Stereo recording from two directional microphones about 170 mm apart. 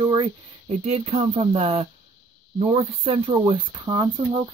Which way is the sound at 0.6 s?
40° right (ahead or behind).